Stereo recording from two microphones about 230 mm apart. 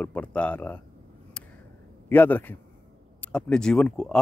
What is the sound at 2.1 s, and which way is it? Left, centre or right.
A man's voice, centre.